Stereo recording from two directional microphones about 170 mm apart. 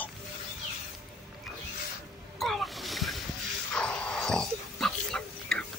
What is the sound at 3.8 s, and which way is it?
Pig, 5° left (ahead or behind).